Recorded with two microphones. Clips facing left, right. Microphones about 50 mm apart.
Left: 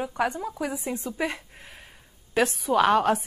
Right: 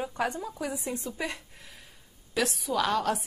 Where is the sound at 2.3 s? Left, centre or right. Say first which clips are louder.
Left 6 dB; left.